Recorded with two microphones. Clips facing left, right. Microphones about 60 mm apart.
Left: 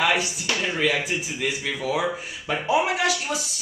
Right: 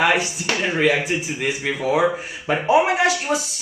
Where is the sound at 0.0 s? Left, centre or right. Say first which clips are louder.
Right 4 dB; right.